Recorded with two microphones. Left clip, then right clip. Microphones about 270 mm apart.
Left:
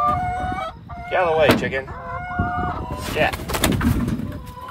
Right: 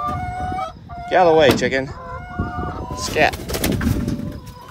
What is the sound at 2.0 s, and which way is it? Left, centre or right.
Chicken, centre.